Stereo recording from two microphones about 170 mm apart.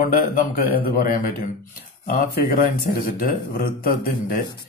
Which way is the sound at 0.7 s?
60° left (ahead or behind).